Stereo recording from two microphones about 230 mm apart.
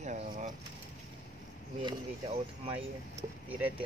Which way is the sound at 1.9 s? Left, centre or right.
Right.